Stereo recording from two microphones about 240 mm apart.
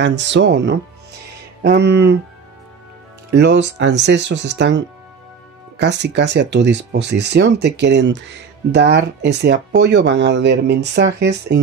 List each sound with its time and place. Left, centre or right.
0.0 s speech: right
3.3 s speech: right